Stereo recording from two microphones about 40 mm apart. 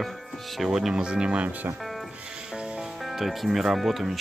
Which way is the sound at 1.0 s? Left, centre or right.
Right.